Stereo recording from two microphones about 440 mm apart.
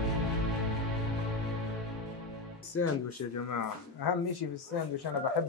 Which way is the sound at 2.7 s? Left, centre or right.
Left.